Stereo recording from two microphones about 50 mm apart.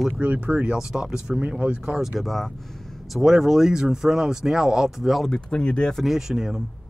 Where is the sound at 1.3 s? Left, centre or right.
Right.